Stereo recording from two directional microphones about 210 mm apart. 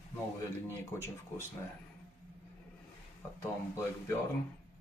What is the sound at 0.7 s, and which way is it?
Speech, 10° left (ahead or behind).